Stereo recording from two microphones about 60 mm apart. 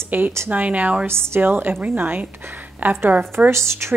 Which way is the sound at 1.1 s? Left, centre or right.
Right.